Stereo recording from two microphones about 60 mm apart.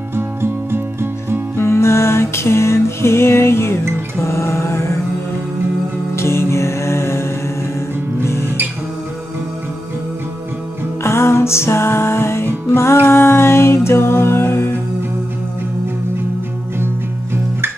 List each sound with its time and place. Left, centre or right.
0.1 s music: right
1.6 s music: left
6.1 s music: left
11.1 s music: left